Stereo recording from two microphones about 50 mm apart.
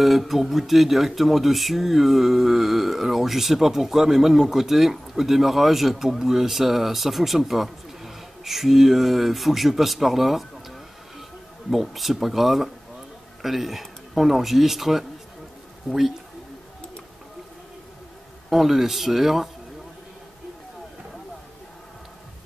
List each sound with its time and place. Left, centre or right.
0.0 s speech: centre
11.7 s speech: centre
18.5 s speech: centre